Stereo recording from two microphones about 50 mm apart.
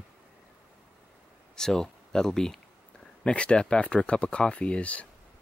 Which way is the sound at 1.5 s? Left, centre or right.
Centre.